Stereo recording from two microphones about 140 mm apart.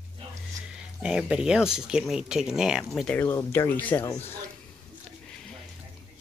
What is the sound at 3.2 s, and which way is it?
Speech, 15° left (ahead or behind).